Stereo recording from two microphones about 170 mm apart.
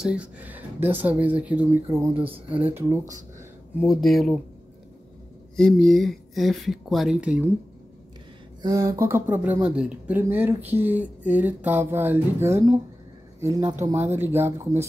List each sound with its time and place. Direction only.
0.0 s speech: 5° right (ahead or behind)
3.8 s speech: centre (ahead or behind)
5.6 s speech: centre (ahead or behind)
8.6 s speech: 20° right (ahead or behind)